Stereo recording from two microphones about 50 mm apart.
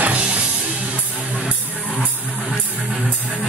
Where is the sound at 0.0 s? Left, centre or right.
Right.